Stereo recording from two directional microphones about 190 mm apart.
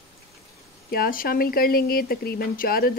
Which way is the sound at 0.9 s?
50° left (ahead or behind).